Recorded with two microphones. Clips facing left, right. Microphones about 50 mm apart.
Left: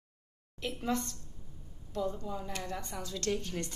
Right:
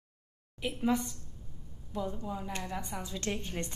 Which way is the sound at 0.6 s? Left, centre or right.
Centre.